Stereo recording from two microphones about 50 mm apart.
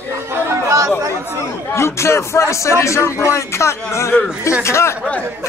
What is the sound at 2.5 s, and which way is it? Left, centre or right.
Speech, left.